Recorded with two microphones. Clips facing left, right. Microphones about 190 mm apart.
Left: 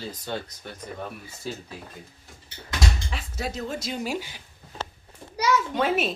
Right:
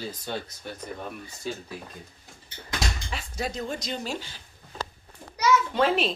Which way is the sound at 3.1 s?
5° left (ahead or behind).